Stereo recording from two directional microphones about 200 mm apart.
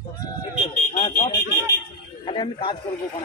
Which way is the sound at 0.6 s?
30° left (ahead or behind).